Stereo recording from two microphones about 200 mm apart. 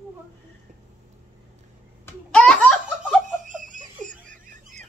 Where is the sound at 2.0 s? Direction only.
5° left (ahead or behind).